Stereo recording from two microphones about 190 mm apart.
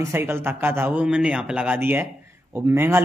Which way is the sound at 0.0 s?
15° right (ahead or behind).